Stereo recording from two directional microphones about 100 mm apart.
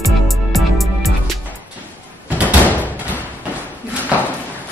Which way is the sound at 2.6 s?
15° left (ahead or behind).